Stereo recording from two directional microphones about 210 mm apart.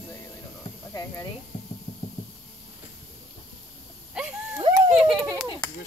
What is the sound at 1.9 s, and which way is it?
Rub, 30° left (ahead or behind).